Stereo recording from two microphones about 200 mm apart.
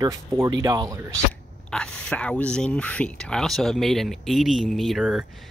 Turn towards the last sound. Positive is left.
turn(degrees=-5)  # may be behind; listen again after turning